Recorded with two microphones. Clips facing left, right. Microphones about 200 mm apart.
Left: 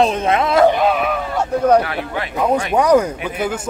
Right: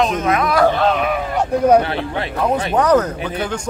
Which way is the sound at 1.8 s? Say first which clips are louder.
Right 1 dB; 30° right (ahead or behind).